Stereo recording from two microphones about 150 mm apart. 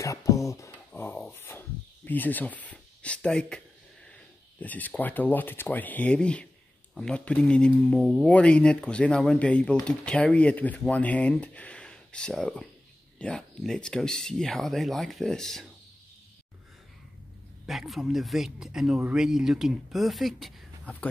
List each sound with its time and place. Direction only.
0.0 s speech: 20° left (ahead or behind); by 15.6 s 5° left (ahead or behind)
17.6 s speech: centre (ahead or behind)